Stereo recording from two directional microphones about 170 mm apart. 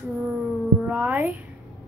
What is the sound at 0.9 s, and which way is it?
Speech, 10° right (ahead or behind).